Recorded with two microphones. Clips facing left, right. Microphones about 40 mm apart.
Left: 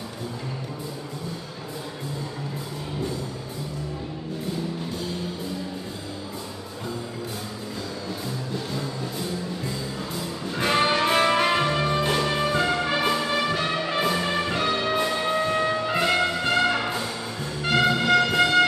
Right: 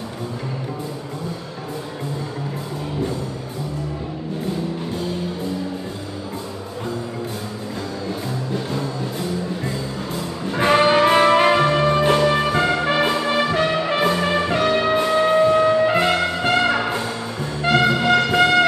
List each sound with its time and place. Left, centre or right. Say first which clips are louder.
10.5 s music: right 7 dB; right